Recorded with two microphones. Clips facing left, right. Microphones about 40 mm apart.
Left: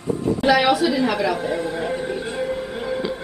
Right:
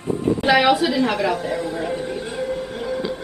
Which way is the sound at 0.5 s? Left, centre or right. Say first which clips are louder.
Right 4 dB; centre.